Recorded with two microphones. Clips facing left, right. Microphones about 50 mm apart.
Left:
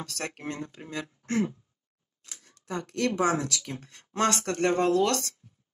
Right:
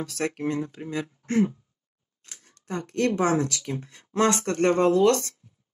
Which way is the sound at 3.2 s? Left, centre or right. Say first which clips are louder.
Right 3 dB; right.